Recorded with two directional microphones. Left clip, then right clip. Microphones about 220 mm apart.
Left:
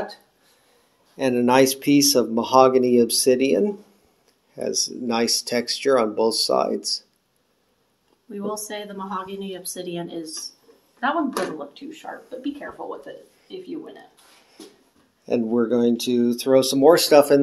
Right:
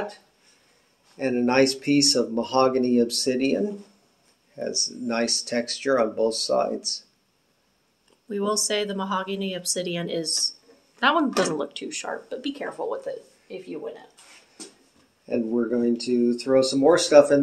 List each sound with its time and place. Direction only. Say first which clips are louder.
1.1 s speech: left 4 dB; 40° left (ahead or behind)
8.3 s speech: right 5 dB; 45° right (ahead or behind)
15.2 s speech: left 4 dB; 45° left (ahead or behind)